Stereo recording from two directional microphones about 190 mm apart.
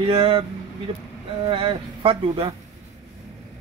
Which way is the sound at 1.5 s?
30° right (ahead or behind).